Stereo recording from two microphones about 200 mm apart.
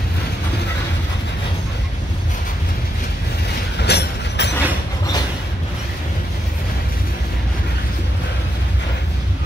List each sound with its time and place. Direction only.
3.8 s train: 55° left (ahead or behind)